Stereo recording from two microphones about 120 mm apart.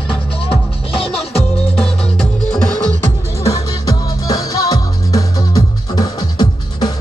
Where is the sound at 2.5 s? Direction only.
5° left (ahead or behind).